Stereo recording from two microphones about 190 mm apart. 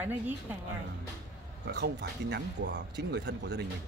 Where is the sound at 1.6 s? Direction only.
60° right (ahead or behind).